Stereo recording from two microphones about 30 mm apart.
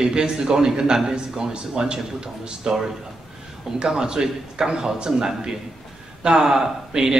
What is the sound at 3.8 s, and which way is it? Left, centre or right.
A man's voice, right.